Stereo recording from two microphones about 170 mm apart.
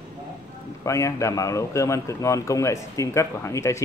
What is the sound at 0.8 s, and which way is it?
Speech, 15° left (ahead or behind).